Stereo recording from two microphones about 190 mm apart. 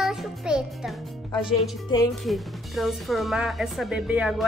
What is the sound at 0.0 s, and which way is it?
Music, centre (ahead or behind).